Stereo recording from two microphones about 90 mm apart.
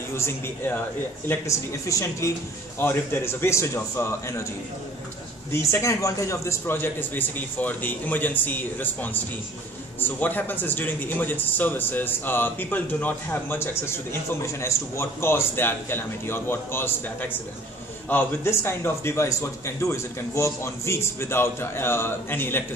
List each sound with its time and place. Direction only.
0.1 s speech: 30° left (ahead or behind)
2.8 s speech: 25° left (ahead or behind)
5.5 s speech: 30° left (ahead or behind)